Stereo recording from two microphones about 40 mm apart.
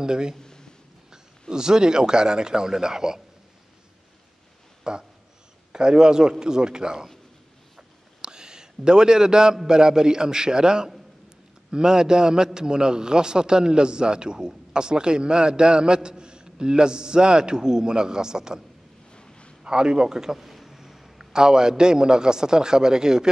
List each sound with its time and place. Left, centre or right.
0.0 s a man's voice: centre
0.4 s a sound: centre
1.5 s a man's voice: centre
4.9 s a man's voice: centre
8.2 s a sound: centre
9.7 s a man's voice: centre
19.1 s a sound: left
19.6 s a man's voice: right
20.3 s a man's voice: centre